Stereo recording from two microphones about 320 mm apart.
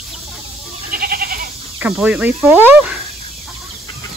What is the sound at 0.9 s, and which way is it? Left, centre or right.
Goat, right.